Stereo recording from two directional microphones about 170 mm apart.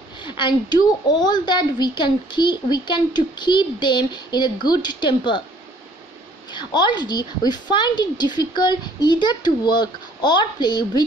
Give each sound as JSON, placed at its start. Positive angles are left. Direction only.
{"t": 0.2, "sound": "a woman's voice", "side_deg": 25}
{"t": 6.5, "sound": "a woman's voice", "side_deg": 25}